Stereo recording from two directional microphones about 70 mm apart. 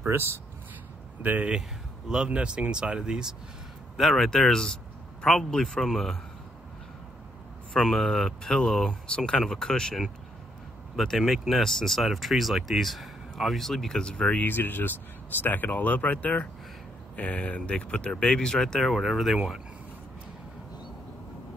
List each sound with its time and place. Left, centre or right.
0.0 s speech: right
1.2 s speech: right
2.0 s speech: centre
3.9 s speech: centre
7.7 s speech: centre
14.4 s speech: left; by 19.4 s centre